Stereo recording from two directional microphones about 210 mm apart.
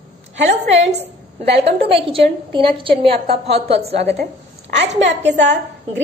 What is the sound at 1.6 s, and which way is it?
A woman's voice, 25° right (ahead or behind).